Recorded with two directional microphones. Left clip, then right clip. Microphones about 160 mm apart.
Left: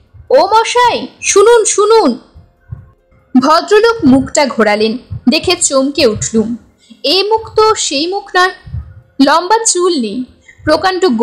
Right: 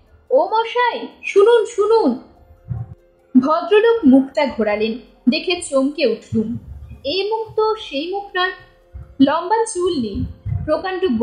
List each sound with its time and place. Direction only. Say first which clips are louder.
0.5 s a woman's voice: left 8 dB; 55° left (ahead or behind)
3.3 s a woman's voice: left 6 dB; 50° left (ahead or behind)